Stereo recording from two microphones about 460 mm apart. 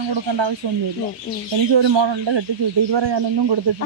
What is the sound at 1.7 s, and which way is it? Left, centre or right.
Speech, right.